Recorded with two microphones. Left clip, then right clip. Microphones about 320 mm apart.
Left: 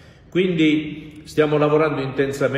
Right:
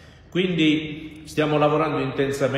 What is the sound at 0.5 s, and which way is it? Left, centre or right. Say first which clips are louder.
Speech: left 1 dB; centre.